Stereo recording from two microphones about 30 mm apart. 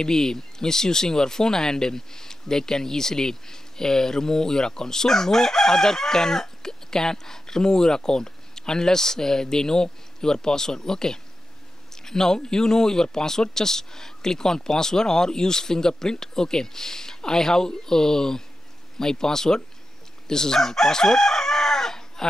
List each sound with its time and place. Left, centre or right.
0.0 s speech: centre
20.2 s chicken: centre